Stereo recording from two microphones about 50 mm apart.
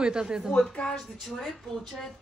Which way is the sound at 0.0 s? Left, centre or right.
Centre.